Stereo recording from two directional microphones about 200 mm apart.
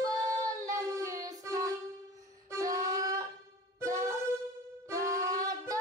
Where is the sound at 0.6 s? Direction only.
15° right (ahead or behind).